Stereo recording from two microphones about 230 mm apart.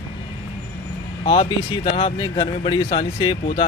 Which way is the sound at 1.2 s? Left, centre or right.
Left.